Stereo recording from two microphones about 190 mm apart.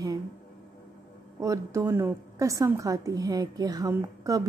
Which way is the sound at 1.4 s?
15° right (ahead or behind).